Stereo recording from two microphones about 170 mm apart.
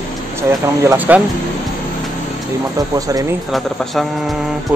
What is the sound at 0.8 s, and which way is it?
Speech, 15° right (ahead or behind).